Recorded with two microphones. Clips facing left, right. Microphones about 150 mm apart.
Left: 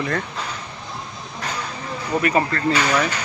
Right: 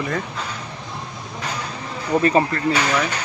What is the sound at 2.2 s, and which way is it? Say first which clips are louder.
Speech: right 2 dB; 25° right (ahead or behind).